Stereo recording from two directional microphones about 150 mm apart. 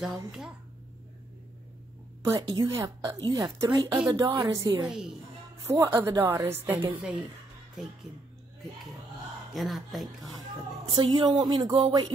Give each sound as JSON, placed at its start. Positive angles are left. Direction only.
{"t": 2.2, "sound": "speech", "side_deg": -25}
{"t": 4.8, "sound": "speech", "side_deg": -5}
{"t": 5.7, "sound": "a woman's voice", "side_deg": -20}
{"t": 9.5, "sound": "speech", "side_deg": 0}
{"t": 11.0, "sound": "speech", "side_deg": -30}